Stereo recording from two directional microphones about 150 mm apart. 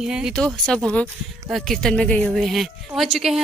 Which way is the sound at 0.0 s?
5° right (ahead or behind).